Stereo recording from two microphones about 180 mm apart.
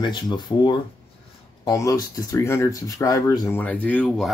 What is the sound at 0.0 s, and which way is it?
Speech, 25° left (ahead or behind).